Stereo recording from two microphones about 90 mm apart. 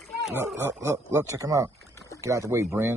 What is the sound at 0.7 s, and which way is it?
Speech, 30° right (ahead or behind).